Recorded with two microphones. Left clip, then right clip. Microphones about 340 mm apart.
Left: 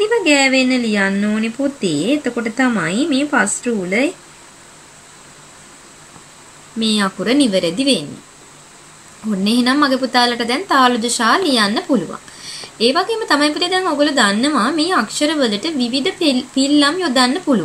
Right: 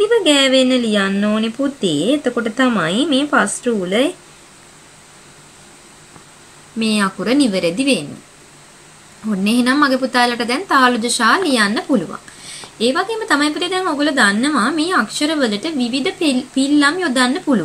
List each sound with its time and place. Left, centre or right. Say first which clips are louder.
0.5 s speech: right 2 dB; centre
6.8 s speech: even; centre
9.3 s speech: even; centre